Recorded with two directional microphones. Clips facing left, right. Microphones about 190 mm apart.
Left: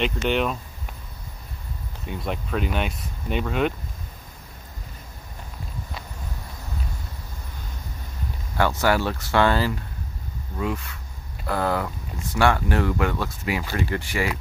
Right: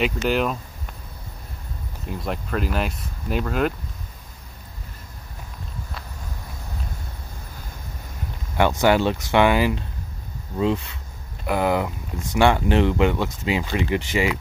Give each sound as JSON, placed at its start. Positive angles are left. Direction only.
{"t": 0.0, "sound": "speech", "side_deg": -5}
{"t": 2.0, "sound": "speech", "side_deg": 0}
{"t": 8.5, "sound": "speech", "side_deg": -20}